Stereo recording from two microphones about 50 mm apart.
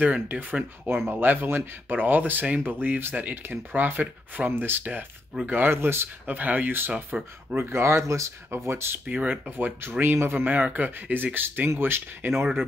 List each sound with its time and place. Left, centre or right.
0.0 s speech: right
6.2 s speech: right
7.1 s speech: centre
7.7 s speech: right
8.6 s speech: right
9.0 s speech: right
9.8 s speech: right
10.4 s speech: right